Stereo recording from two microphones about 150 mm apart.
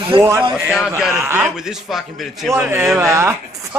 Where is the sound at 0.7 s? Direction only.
5° right (ahead or behind).